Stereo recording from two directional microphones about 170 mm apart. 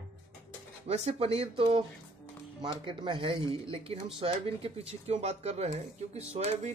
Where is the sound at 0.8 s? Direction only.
40° right (ahead or behind).